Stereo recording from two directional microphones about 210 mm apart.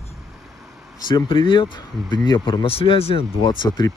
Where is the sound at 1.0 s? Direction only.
20° left (ahead or behind).